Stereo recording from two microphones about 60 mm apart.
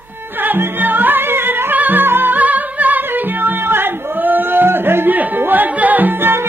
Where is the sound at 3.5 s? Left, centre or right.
Right.